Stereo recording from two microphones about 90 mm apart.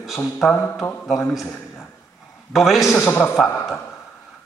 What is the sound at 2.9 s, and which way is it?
Speech, 20° left (ahead or behind).